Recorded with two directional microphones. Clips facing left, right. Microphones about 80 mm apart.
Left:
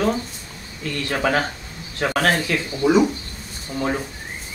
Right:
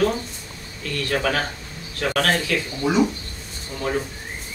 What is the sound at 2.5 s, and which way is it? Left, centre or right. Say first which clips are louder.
Speech: even; left.